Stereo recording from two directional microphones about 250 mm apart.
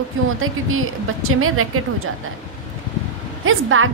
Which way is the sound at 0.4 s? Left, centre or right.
Right.